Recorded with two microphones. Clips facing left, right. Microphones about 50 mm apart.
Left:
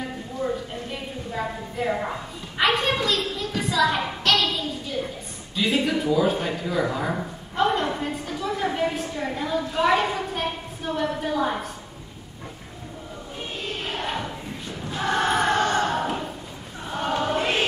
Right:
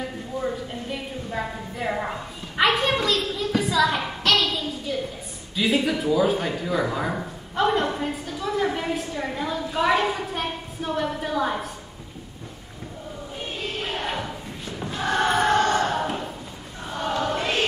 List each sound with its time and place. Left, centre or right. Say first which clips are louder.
1.3 s a woman's voice: left 1 dB; centre
14.9 s a sound: even; centre
16.9 s choir: left 1 dB; left